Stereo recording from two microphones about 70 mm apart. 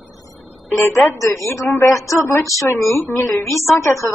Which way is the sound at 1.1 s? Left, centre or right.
Left.